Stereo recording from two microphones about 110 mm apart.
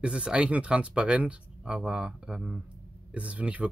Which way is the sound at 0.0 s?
10° right (ahead or behind).